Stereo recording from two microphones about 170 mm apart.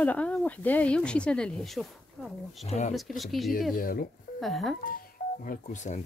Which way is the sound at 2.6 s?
40° left (ahead or behind).